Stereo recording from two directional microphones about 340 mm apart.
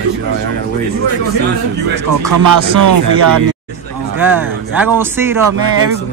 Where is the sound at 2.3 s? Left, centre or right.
Right.